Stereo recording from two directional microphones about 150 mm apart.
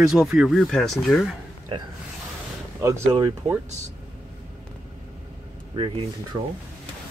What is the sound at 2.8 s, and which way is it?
Speech, 20° right (ahead or behind).